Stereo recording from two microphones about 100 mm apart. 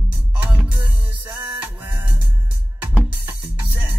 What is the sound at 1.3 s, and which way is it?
Music, 15° right (ahead or behind).